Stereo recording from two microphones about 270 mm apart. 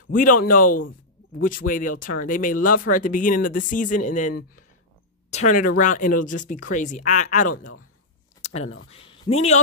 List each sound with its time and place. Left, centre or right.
0.4 s speech: left
2.5 s speech: left
2.8 s speech: left
8.4 s a sound: left
8.9 s speech: centre